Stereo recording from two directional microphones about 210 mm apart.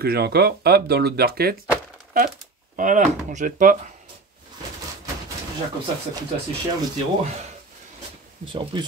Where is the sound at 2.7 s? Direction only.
40° right (ahead or behind).